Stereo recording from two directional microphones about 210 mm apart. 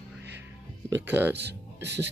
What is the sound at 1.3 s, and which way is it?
Speech, 55° right (ahead or behind).